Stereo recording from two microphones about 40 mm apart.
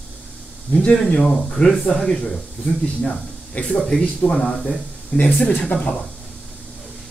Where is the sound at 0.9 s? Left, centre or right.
Centre.